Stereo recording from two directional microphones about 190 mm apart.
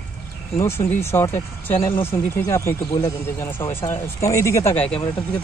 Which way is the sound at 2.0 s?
15° left (ahead or behind).